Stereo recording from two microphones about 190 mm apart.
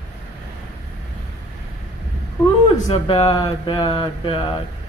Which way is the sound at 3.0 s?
25° left (ahead or behind).